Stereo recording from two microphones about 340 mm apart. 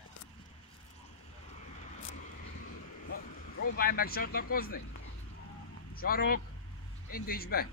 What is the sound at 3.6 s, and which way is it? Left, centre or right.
Speech, left.